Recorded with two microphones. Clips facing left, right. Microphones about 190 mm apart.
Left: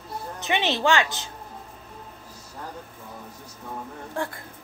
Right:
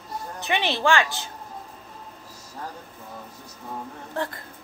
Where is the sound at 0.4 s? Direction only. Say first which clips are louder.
Left 1 dB; 20° left (ahead or behind).